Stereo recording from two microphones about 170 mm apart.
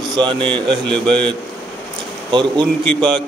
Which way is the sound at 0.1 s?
30° right (ahead or behind).